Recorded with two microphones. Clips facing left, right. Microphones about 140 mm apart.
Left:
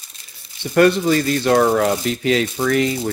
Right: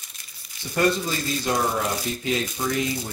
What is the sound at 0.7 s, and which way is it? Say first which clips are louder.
Speech: left 9 dB; 70° left (ahead or behind).